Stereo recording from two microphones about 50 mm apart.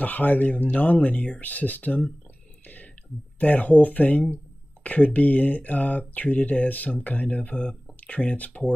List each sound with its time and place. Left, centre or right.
0.0 s speech: left
3.3 s speech: left